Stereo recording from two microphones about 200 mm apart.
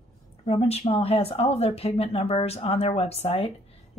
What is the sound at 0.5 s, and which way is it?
A woman's voice, 30° left (ahead or behind).